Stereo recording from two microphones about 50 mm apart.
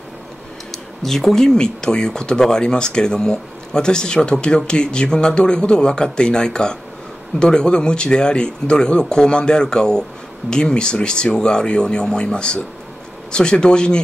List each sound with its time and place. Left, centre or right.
1.0 s speech: centre